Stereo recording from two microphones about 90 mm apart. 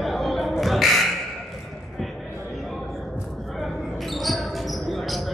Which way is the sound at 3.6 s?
Centre (ahead or behind).